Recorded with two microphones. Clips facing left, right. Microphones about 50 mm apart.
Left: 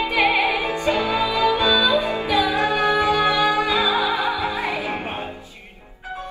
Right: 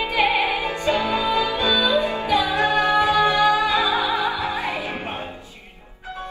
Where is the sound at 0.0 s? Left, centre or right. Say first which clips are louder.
Left 1 dB; left.